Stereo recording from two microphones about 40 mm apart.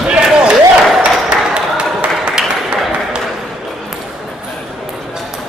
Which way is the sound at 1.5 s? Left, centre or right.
Right.